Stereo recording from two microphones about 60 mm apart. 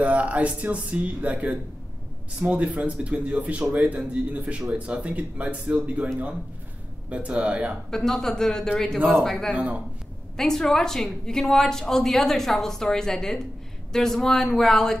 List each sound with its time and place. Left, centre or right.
0.0 s speech: right
7.1 s speech: right
7.9 s a woman's voice: centre
9.5 s speech: centre
10.3 s a woman's voice: centre